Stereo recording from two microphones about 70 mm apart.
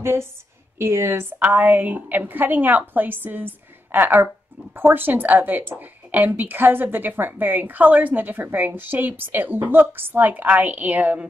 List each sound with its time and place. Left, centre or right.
0.0 s a woman's voice: right